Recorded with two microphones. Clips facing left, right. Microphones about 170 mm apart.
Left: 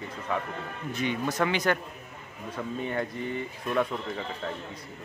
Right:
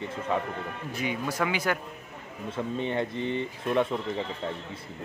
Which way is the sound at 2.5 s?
25° right (ahead or behind).